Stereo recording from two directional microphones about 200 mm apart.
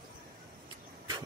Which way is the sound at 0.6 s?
20° right (ahead or behind).